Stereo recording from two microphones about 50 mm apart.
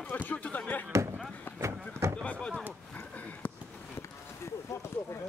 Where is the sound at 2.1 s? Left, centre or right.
Left.